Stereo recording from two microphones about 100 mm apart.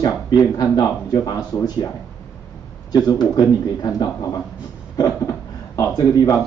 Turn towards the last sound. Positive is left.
turn(degrees=35)  # may be behind; listen again after turning